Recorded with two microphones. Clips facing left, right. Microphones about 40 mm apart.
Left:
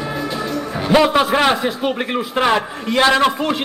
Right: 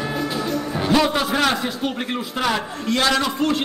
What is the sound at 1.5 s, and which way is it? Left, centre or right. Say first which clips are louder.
A man's voice: left 5 dB; centre.